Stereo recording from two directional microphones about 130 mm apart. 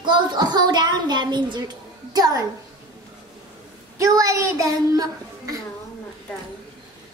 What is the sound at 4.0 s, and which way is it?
A child's voice, 25° right (ahead or behind).